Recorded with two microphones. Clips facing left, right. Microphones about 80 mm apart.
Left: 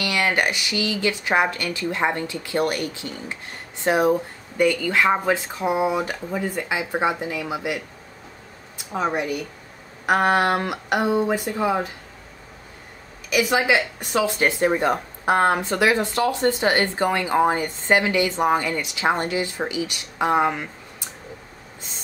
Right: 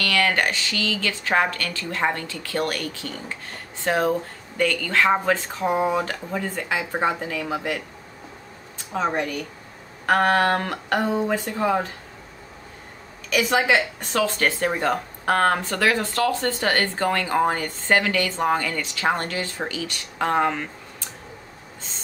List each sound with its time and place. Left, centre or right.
0.0 s speech: centre
8.9 s speech: centre
13.3 s speech: centre